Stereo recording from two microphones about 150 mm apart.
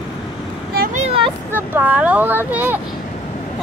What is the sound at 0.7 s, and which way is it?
Vehicle, 75° right (ahead or behind).